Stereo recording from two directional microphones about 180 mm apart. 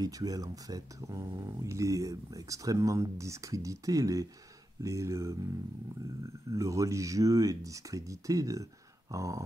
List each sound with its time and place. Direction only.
0.0 s speech: 20° right (ahead or behind)
6.5 s speech: 15° right (ahead or behind)